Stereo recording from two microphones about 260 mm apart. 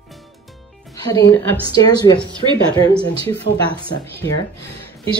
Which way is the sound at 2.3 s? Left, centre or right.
Centre.